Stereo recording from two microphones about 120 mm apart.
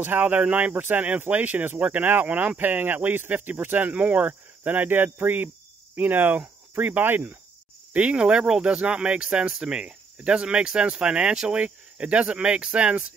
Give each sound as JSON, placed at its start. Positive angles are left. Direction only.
{"t": 0.0, "sound": "speech", "side_deg": -15}